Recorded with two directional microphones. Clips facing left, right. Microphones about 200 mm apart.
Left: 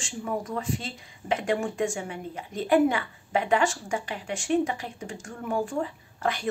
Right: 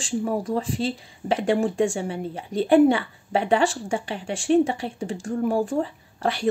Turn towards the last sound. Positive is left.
turn(degrees=-30)  # may be behind; listen again after turning